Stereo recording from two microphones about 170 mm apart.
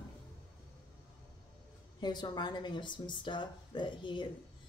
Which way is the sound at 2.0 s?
25° left (ahead or behind).